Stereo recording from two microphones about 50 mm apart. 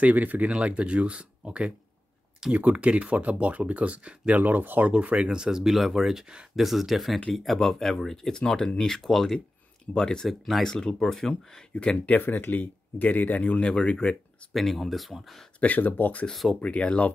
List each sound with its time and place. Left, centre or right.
0.0 s speech: right
0.5 s speech: right
2.4 s speech: centre
2.8 s speech: right
5.0 s speech: right; by 8.9 s centre
8.9 s speech: centre
12.1 s speech: left
14.5 s speech: centre
15.6 s speech: left